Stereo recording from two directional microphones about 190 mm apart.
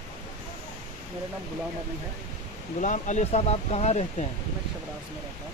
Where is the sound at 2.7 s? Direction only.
40° left (ahead or behind).